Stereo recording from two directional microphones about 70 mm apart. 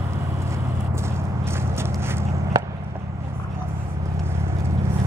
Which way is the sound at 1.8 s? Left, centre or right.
Right.